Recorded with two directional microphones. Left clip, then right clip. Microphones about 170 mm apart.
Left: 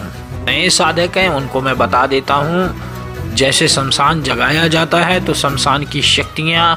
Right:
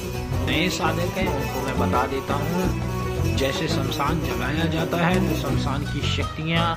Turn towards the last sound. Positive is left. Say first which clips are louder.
# left 11 dB
turn(degrees=60)  # may be behind; listen again after turning